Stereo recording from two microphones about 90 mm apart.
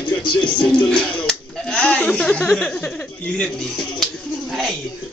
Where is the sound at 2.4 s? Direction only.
Centre (ahead or behind).